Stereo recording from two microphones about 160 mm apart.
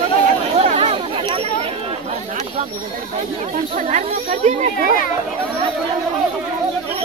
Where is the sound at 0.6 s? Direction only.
40° right (ahead or behind).